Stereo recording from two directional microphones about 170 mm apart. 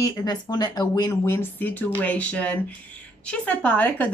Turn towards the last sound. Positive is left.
turn(degrees=10)  # may be behind; listen again after turning